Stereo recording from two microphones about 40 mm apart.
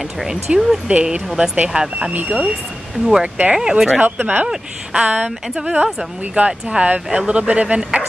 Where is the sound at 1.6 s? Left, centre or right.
Centre.